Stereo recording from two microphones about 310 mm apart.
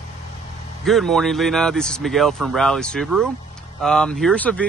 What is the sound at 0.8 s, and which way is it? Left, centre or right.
Speech, centre.